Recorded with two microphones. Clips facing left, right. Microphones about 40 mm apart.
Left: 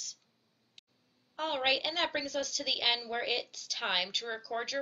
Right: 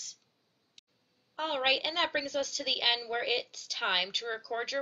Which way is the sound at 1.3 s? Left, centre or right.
Centre.